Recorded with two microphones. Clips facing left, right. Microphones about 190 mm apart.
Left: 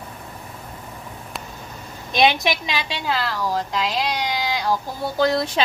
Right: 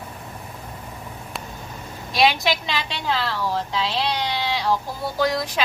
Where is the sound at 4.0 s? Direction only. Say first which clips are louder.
Even; 10° left (ahead or behind).